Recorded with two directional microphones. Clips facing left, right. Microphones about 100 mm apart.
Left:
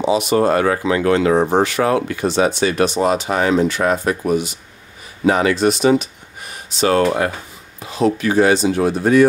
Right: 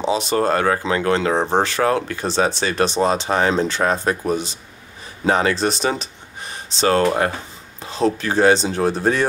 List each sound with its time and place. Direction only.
0.1 s speech: 30° right (ahead or behind)